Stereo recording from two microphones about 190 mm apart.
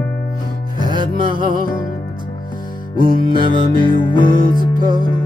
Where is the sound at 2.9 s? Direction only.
50° right (ahead or behind).